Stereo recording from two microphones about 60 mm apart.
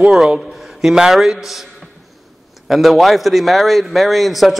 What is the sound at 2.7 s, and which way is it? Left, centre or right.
A man's voice, centre.